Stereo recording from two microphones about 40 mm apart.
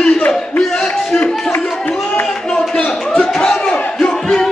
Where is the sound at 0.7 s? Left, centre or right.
Centre.